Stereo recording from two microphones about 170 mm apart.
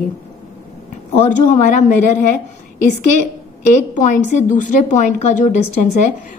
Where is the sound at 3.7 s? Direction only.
45° left (ahead or behind).